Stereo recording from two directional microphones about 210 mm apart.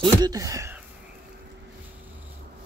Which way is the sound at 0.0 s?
15° right (ahead or behind).